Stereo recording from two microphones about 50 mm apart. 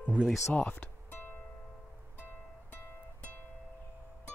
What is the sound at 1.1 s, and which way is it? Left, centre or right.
Music, left.